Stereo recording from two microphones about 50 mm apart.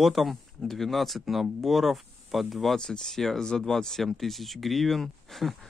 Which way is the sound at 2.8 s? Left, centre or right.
Centre.